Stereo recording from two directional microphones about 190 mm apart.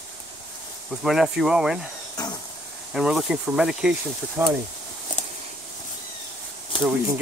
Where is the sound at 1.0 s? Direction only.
Centre (ahead or behind).